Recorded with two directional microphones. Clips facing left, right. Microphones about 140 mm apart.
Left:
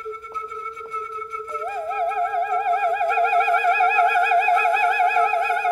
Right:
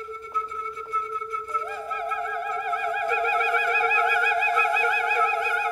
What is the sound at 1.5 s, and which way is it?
Music, 25° left (ahead or behind).